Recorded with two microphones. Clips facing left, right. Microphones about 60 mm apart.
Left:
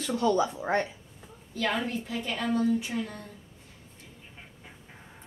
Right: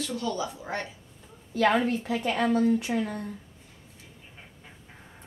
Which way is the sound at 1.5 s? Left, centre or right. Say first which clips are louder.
Right 6 dB; right.